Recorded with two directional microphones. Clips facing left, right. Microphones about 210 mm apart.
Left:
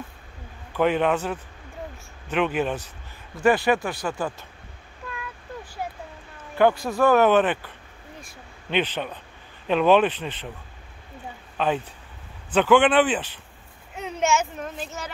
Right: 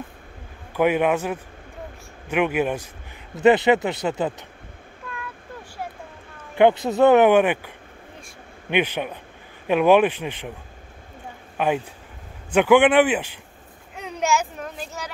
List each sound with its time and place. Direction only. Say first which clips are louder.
0.7 s speech: right 2 dB; 10° right (ahead or behind)
3.3 s speech: right 4 dB; 20° right (ahead or behind)
6.5 s speech: right 3 dB; 20° right (ahead or behind)
11.5 s speech: right 2 dB; 10° right (ahead or behind)
13.9 s a child's voice: even; centre (ahead or behind)